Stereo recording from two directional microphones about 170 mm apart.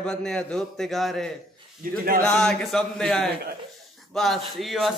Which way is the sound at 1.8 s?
55° right (ahead or behind).